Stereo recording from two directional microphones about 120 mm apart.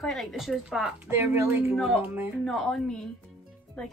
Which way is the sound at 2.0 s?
20° right (ahead or behind).